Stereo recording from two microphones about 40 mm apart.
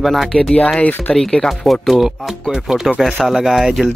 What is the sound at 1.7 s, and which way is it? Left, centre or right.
Speech, centre.